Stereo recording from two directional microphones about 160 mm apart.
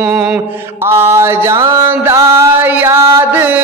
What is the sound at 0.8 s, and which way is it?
Music, 15° right (ahead or behind).